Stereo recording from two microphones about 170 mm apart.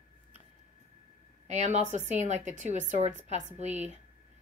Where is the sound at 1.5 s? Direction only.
45° right (ahead or behind).